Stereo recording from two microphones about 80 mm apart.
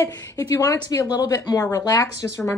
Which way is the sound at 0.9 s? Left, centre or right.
Left.